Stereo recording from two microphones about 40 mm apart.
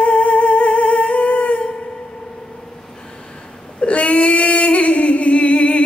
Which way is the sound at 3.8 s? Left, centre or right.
Left.